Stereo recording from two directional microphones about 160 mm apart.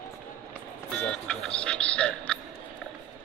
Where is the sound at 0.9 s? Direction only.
5° left (ahead or behind).